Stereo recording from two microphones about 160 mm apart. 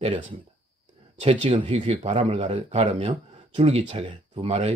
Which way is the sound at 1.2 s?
35° right (ahead or behind).